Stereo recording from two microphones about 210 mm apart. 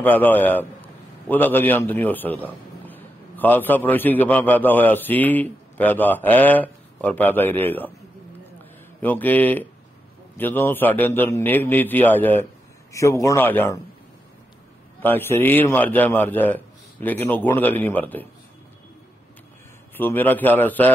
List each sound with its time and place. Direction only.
0.0 s a man's voice: 10° left (ahead or behind)
9.0 s a man's voice: 10° left (ahead or behind)
15.0 s a man's voice: 10° left (ahead or behind)
20.0 s a man's voice: 10° left (ahead or behind)